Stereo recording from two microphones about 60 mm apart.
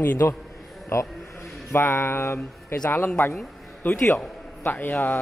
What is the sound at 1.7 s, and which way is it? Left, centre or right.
Speech, left.